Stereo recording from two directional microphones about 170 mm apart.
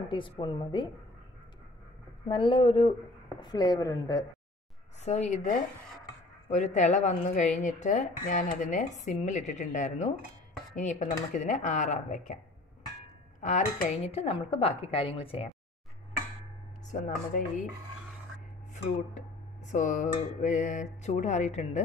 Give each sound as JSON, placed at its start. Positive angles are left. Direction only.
{"t": 0.1, "sound": "speech", "side_deg": 30}
{"t": 2.2, "sound": "a woman's voice", "side_deg": 30}
{"t": 5.0, "sound": "a woman's voice", "side_deg": 40}
{"t": 6.5, "sound": "speech", "side_deg": 45}
{"t": 13.4, "sound": "speech", "side_deg": 50}
{"t": 13.8, "sound": "a woman's voice", "side_deg": 35}
{"t": 16.9, "sound": "speech", "side_deg": 50}
{"t": 19.7, "sound": "speech", "side_deg": 45}